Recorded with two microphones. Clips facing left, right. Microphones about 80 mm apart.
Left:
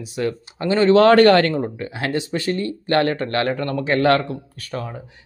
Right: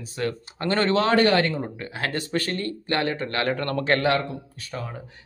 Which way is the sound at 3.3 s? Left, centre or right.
Left.